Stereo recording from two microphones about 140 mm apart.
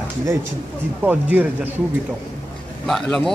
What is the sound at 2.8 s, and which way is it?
Speech, 5° left (ahead or behind).